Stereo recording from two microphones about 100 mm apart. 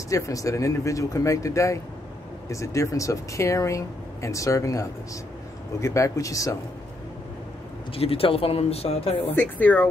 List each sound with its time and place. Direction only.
0.1 s speech: 35° left (ahead or behind)
7.9 s speech: 70° left (ahead or behind)
9.3 s speech: 20° left (ahead or behind)